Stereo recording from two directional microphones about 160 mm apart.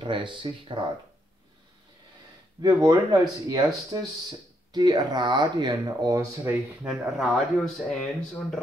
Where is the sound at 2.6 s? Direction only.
25° right (ahead or behind).